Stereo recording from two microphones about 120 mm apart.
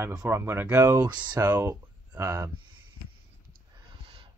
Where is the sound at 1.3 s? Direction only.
15° right (ahead or behind).